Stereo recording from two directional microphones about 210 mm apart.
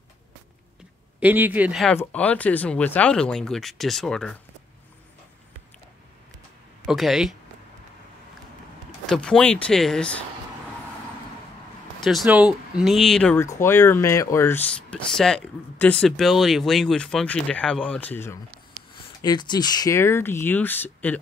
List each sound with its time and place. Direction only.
1.2 s speech: 10° right (ahead or behind)
6.9 s speech: centre (ahead or behind)
9.0 s speech: 5° left (ahead or behind)
12.0 s speech: centre (ahead or behind)
18.5 s a sound: 85° right
18.9 s speech: 20° left (ahead or behind)